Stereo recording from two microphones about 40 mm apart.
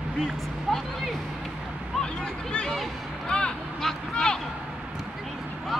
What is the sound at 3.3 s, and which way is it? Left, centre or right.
Vehicle, left.